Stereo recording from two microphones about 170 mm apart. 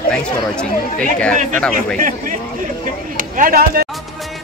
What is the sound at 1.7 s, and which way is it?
Speech, 50° right (ahead or behind).